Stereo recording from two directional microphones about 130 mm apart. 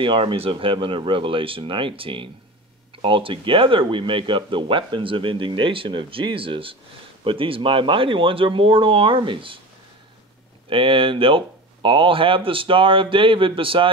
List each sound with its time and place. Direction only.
0.0 s speech: 40° right (ahead or behind)
10.7 s speech: 40° right (ahead or behind)